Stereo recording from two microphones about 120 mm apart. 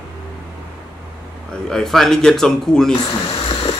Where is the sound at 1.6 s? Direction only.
5° left (ahead or behind).